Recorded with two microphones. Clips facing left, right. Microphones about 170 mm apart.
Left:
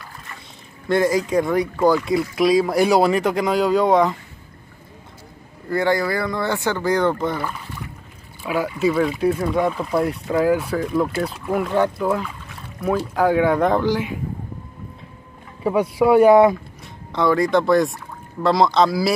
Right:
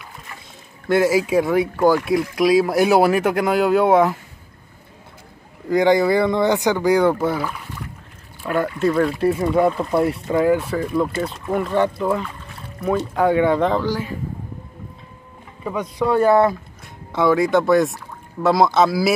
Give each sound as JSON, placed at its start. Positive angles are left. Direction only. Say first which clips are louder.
{"t": 0.8, "sound": "speech", "louder": "right 2 dB", "side_deg": -5}
{"t": 5.7, "sound": "speech", "louder": "right 5 dB", "side_deg": -15}
{"t": 8.4, "sound": "speech", "louder": "right 1 dB", "side_deg": 5}
{"t": 15.6, "sound": "speech", "louder": "left 5 dB", "side_deg": 10}
{"t": 17.1, "sound": "speech", "louder": "right 1 dB", "side_deg": -5}